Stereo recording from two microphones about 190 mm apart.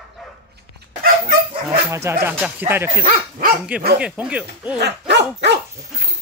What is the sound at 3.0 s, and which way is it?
Speech, 45° right (ahead or behind).